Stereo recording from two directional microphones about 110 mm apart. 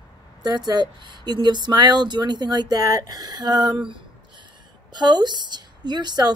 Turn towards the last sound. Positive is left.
turn(degrees=-40)  # may be behind; listen again after turning